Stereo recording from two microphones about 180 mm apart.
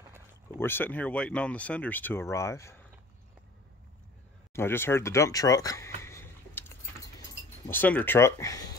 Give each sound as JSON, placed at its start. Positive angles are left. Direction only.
{"t": 0.6, "sound": "speech", "side_deg": 10}
{"t": 4.6, "sound": "speech", "side_deg": 15}